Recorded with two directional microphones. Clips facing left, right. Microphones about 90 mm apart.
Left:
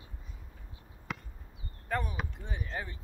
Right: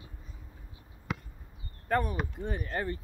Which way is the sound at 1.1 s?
Centre (ahead or behind).